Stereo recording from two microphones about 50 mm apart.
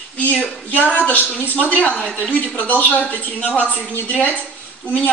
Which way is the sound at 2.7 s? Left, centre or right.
Left.